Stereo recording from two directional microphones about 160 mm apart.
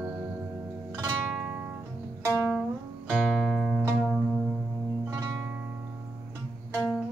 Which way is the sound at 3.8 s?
10° right (ahead or behind).